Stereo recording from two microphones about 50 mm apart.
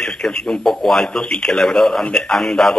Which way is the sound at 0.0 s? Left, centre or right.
Centre.